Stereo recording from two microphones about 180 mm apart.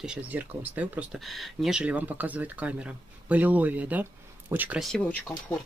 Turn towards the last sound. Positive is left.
turn(degrees=5)  # may be behind; listen again after turning